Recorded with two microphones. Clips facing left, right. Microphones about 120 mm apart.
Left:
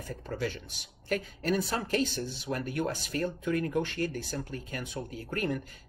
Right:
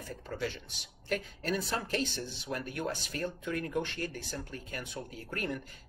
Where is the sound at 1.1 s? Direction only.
40° left (ahead or behind).